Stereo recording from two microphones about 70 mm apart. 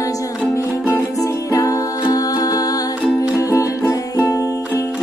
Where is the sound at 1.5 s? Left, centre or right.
Left.